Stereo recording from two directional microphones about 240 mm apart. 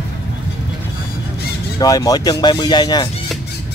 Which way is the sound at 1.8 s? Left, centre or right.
Centre.